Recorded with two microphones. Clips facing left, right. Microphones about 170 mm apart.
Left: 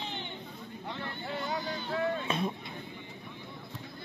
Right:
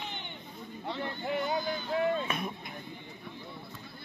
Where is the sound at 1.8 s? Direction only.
30° left (ahead or behind).